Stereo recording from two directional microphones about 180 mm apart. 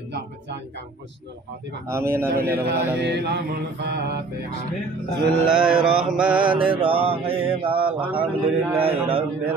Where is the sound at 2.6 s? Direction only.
70° right (ahead or behind).